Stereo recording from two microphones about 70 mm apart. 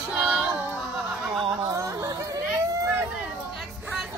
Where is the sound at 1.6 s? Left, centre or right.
Right.